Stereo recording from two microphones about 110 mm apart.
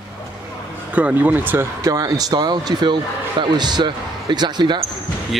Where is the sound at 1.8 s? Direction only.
35° right (ahead or behind).